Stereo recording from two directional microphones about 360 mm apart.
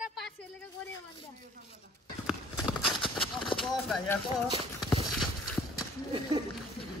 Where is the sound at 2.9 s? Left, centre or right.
Centre.